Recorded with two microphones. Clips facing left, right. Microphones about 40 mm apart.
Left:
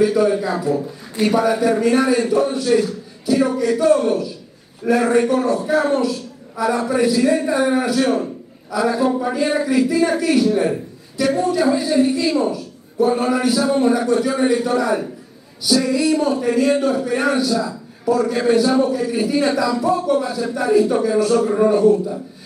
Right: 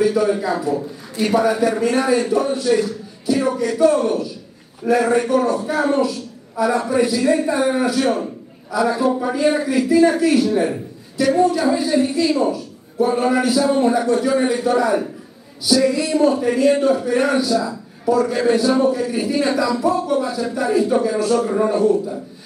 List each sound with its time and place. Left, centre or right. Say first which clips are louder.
0.0 s a man's voice: left 1 dB; centre
5.7 s a man's voice: left 1 dB; centre